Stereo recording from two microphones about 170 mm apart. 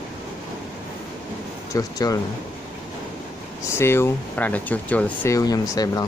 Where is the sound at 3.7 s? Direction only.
15° left (ahead or behind).